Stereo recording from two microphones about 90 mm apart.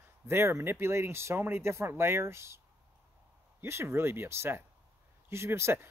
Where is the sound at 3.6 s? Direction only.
30° right (ahead or behind).